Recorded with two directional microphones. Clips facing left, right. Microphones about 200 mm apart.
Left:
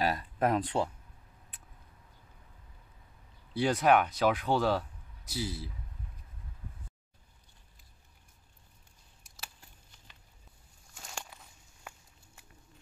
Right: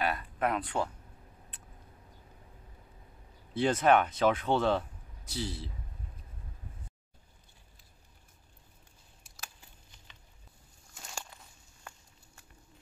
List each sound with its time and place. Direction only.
0.0 s a sound: 35° left (ahead or behind)
3.6 s speech: 5° left (ahead or behind)
11.0 s walk: centre (ahead or behind)